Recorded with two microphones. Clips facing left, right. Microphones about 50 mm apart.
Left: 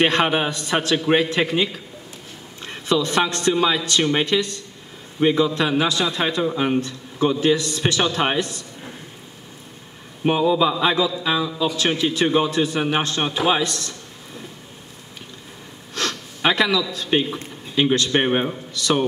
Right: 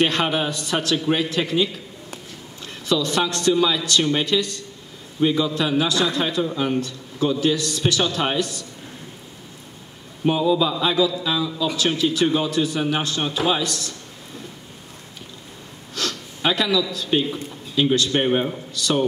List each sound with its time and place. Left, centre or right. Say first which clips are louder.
0.0 s a man's voice: left 2 dB; left
10.2 s a man's voice: left 1 dB; left
15.9 s gasp: left 2 dB; left
17.3 s a man's voice: even; left